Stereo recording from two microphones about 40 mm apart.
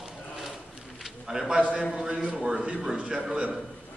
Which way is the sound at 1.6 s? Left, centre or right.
Right.